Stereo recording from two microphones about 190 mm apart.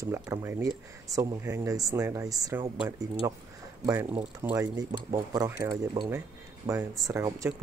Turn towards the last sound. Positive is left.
turn(degrees=-15)  # may be behind; listen again after turning